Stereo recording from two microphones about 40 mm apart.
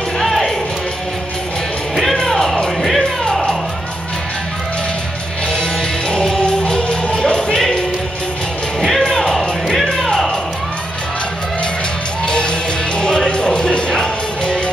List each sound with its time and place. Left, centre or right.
2.2 s music: centre
5.6 s music: centre
9.1 s music: centre
9.8 s music: centre
12.3 s music: left